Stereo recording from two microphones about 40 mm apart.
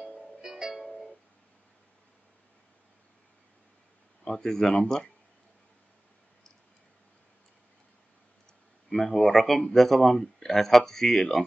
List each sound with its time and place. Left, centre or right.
0.0 s music: centre
4.2 s speech: centre
8.9 s speech: centre